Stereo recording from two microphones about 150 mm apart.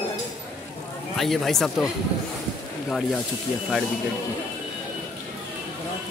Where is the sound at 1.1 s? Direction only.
Centre (ahead or behind).